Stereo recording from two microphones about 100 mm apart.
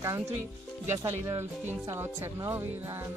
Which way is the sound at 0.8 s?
25° right (ahead or behind).